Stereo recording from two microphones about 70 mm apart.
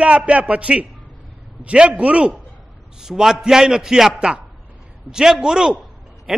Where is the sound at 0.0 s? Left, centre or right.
Centre.